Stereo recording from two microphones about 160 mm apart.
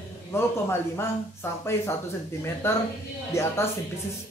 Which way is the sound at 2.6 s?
15° left (ahead or behind).